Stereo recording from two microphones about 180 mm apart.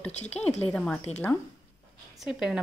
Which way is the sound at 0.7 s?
5° left (ahead or behind).